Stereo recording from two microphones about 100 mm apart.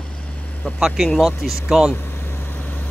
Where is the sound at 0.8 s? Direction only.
5° right (ahead or behind).